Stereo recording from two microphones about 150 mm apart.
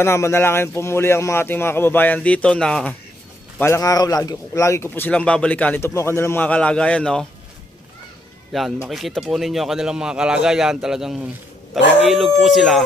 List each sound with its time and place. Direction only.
0.0 s speech: 15° left (ahead or behind)
3.5 s speech: 15° left (ahead or behind)
8.5 s a man's voice: centre (ahead or behind)